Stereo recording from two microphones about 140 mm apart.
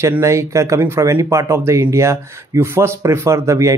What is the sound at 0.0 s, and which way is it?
Speech, 20° right (ahead or behind).